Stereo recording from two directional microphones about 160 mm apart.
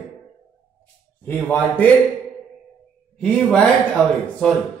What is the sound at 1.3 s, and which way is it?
Speech, 10° left (ahead or behind).